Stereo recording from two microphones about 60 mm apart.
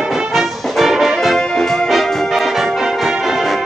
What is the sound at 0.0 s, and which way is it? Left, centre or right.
Brass instrument, centre.